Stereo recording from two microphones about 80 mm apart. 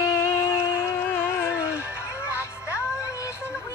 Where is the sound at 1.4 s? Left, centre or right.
Centre.